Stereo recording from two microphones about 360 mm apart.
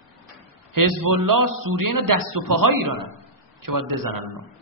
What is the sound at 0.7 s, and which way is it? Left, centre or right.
A man's voice, right.